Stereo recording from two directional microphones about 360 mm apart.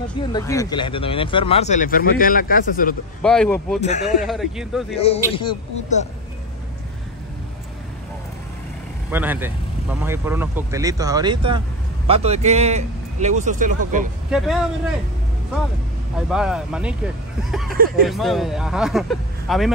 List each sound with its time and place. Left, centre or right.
0.3 s speech: centre
3.2 s speech: centre
3.8 s a man's voice: centre
4.2 s speech: centre
4.9 s speech: centre
9.1 s speech: centre; by 14.0 s right
14.3 s speech: centre
16.2 s speech: centre
17.6 s speech: right
18.0 s speech: centre